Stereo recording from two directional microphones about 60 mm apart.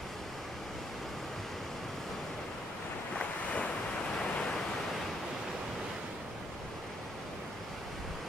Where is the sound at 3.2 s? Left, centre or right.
Left.